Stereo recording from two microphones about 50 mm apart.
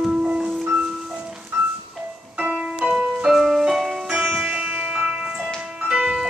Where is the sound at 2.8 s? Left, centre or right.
Centre.